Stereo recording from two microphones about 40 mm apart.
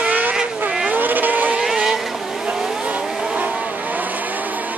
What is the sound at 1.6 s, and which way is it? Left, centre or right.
Vehicle, centre.